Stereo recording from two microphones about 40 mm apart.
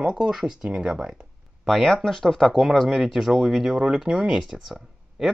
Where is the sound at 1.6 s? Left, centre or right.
Centre.